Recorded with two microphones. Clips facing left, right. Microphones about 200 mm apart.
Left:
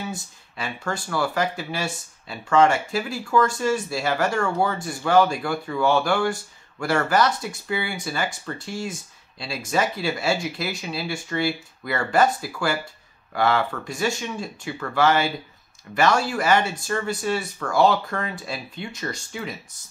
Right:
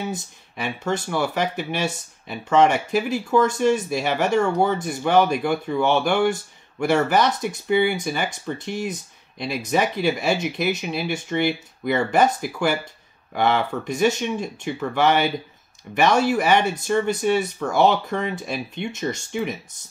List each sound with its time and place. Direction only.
0.1 s speech: 20° right (ahead or behind)